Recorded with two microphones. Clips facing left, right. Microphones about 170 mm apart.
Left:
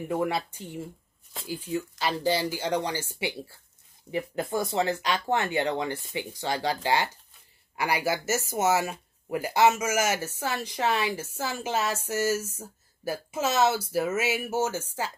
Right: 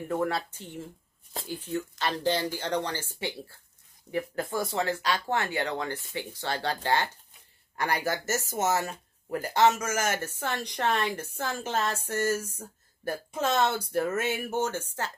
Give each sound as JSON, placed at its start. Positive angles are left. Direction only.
{"t": 0.1, "sound": "speech", "side_deg": 10}